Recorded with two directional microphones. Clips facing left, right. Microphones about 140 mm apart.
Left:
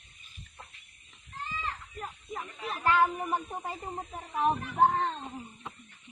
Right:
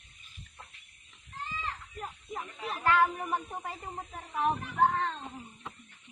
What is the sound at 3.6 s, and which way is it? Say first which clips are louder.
Speech: left 3 dB; 25° left (ahead or behind).